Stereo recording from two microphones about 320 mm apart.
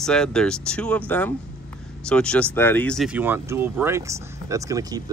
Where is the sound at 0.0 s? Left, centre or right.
Centre.